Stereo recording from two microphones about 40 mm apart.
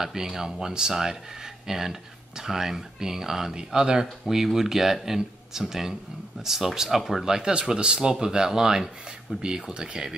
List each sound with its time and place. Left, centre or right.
0.0 s speech: centre
7.2 s speech: centre